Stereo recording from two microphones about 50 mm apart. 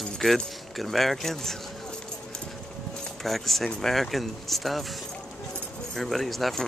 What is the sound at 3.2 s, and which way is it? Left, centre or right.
Speech, centre.